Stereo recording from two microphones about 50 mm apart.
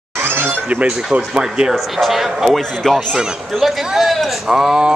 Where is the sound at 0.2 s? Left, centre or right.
Right.